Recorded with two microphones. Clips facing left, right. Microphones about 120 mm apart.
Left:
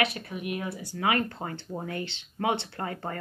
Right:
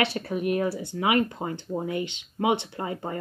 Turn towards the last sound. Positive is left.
turn(degrees=-15)  # may be behind; listen again after turning